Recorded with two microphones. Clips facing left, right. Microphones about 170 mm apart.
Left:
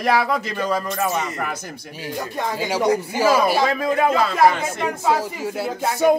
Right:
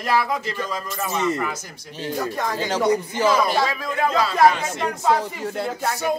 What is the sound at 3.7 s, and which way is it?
Speech, 50° left (ahead or behind).